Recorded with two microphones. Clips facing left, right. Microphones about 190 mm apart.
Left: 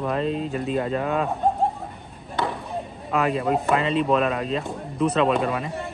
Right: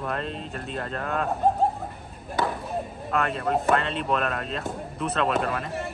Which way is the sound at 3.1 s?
Centre (ahead or behind).